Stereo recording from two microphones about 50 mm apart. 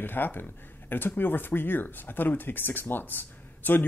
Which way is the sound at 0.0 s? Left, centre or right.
Left.